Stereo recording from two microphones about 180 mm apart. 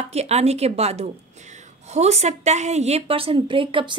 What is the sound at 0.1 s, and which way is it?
A woman's voice, 35° right (ahead or behind).